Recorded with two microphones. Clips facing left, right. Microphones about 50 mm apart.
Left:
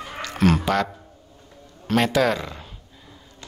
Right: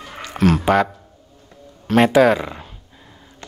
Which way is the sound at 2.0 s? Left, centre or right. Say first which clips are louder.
Right 7 dB; centre.